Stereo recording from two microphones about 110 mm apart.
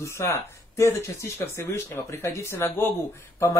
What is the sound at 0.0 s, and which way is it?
Speech, 25° left (ahead or behind).